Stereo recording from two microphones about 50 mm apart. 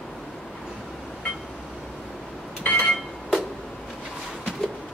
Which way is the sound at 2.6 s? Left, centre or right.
Left.